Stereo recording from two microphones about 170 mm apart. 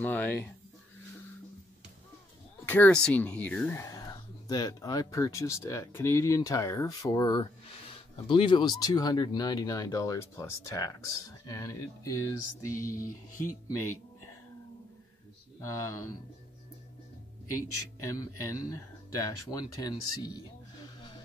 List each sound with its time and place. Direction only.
0.0 s speech: 10° left (ahead or behind)
2.6 s speech: 10° left (ahead or behind)
3.9 s speech: 25° left (ahead or behind)
15.6 s speech: 20° left (ahead or behind)
18.0 s speech: 20° left (ahead or behind)